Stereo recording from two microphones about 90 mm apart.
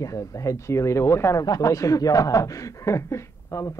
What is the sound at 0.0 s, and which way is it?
Speech, 40° left (ahead or behind).